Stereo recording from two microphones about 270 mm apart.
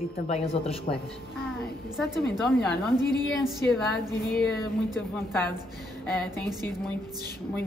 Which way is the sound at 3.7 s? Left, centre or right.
Centre.